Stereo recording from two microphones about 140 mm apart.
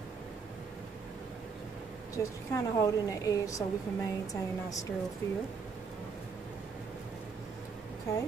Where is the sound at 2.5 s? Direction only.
25° left (ahead or behind).